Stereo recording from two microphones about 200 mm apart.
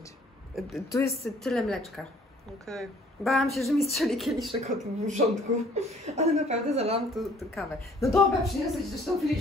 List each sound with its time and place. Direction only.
0.6 s speech: centre (ahead or behind)
4.5 s speech: 35° right (ahead or behind)
7.2 s speech: centre (ahead or behind)